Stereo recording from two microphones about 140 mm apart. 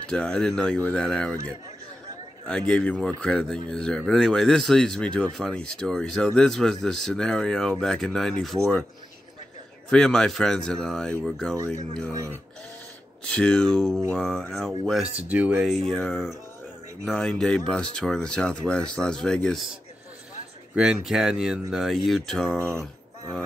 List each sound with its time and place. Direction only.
0.1 s speech: 5° left (ahead or behind)
2.4 s speech: 5° left (ahead or behind)
9.8 s speech: 5° left (ahead or behind)
11.9 s speech: 25° right (ahead or behind)
13.2 s speech: 5° left (ahead or behind)
15.1 s speech: 10° right (ahead or behind)